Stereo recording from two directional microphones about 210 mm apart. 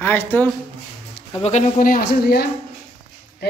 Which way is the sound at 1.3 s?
30° left (ahead or behind).